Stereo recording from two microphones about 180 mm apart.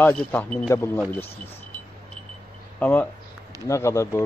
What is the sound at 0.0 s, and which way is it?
Speech, 10° left (ahead or behind).